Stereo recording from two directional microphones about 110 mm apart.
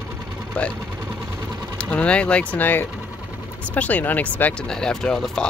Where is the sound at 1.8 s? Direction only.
10° left (ahead or behind).